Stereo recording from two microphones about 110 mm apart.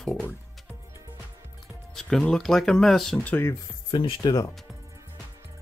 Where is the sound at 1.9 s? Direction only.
5° left (ahead or behind).